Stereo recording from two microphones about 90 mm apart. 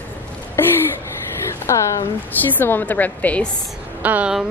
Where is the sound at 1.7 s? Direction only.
35° left (ahead or behind).